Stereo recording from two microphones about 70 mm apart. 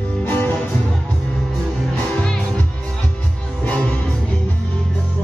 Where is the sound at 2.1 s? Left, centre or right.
Centre.